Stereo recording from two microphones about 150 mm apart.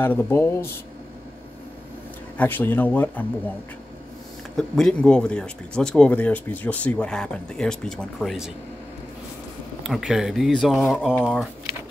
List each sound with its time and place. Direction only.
0.0 s speech: 15° left (ahead or behind)
2.3 s speech: 10° left (ahead or behind)
4.6 s speech: 5° left (ahead or behind)
9.8 s speech: centre (ahead or behind)